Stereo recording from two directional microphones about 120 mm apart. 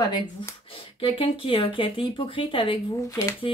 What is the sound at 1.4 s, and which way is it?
Speech, 50° left (ahead or behind).